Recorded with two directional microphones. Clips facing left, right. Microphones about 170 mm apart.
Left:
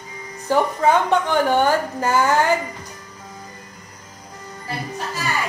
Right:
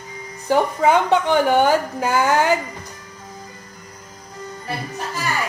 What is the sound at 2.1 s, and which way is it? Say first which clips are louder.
Speech: even; centre (ahead or behind).